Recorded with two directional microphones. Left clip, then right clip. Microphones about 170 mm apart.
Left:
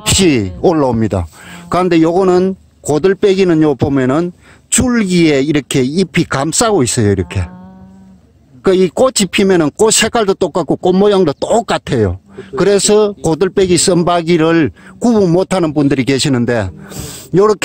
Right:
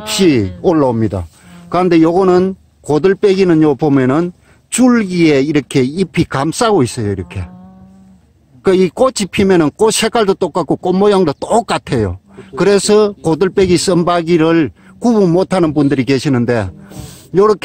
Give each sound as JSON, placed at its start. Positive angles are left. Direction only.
{"t": 0.0, "sound": "speech", "side_deg": 25}
{"t": 1.7, "sound": "speech", "side_deg": 20}
{"t": 8.6, "sound": "speech", "side_deg": 10}
{"t": 13.2, "sound": "speech", "side_deg": 15}